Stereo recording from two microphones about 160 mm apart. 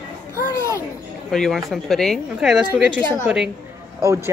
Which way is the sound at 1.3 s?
5° left (ahead or behind).